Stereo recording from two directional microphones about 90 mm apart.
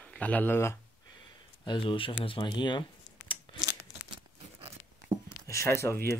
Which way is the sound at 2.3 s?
60° left (ahead or behind).